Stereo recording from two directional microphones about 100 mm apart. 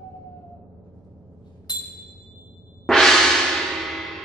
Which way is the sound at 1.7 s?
40° left (ahead or behind).